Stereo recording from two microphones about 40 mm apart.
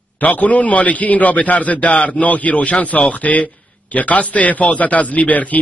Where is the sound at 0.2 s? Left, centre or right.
Left.